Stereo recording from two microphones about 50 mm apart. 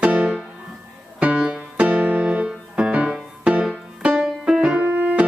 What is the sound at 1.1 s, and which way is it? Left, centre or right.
Keyboard, right.